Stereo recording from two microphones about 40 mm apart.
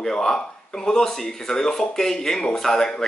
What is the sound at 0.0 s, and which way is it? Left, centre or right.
Speech, centre.